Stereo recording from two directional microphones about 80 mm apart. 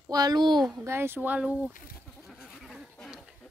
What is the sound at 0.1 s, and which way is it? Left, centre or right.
Speech, right.